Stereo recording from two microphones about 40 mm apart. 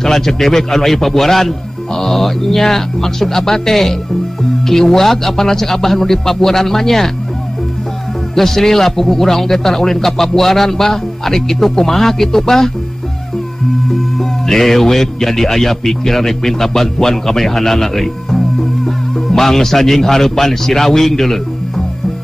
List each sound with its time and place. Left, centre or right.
0.0 s a man's voice: centre
8.4 s a man's voice: centre
13.8 s a man's voice: centre